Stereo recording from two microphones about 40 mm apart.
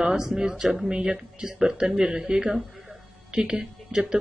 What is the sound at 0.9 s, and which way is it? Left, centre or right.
A woman's voice, centre.